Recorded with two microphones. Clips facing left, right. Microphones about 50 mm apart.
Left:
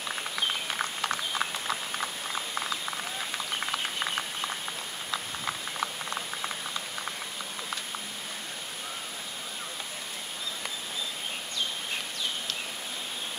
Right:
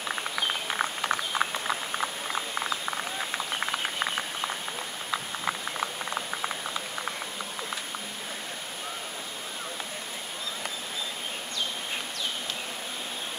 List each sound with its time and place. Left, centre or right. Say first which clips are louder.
0.1 s a sound: right 1 dB; centre
5.1 s patter: right 3 dB; centre
5.8 s boiling: right 2 dB; centre